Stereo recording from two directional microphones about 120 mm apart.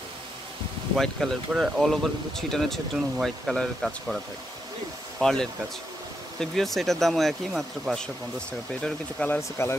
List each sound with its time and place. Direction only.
0.9 s speech: centre (ahead or behind)
5.2 s speech: 5° left (ahead or behind)
9.4 s speech: 25° left (ahead or behind)